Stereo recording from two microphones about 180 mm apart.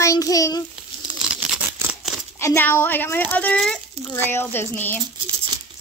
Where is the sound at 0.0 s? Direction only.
20° left (ahead or behind).